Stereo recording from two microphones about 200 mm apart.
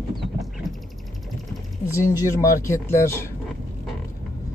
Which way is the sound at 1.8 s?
15° left (ahead or behind).